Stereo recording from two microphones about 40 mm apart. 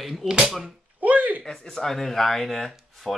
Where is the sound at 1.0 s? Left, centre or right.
Right.